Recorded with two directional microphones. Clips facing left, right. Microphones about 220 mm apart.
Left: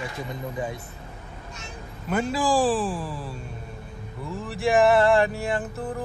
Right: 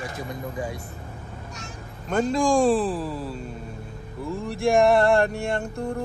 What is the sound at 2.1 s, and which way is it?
Music, 5° left (ahead or behind).